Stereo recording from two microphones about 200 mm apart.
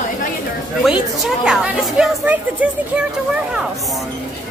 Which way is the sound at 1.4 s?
Centre (ahead or behind).